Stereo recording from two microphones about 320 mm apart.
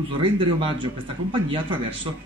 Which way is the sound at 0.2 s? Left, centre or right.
Centre.